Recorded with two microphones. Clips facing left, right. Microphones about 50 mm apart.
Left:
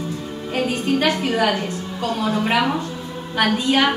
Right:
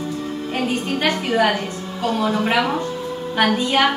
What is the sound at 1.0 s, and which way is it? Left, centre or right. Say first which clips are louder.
A woman's voice: right 3 dB; centre.